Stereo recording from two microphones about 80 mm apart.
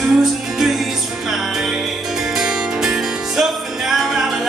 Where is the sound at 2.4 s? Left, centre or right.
Centre.